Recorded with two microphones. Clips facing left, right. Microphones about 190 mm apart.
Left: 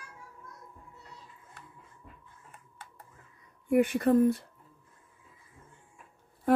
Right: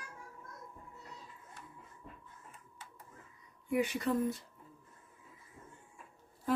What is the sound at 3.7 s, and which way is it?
Speech, 55° left (ahead or behind).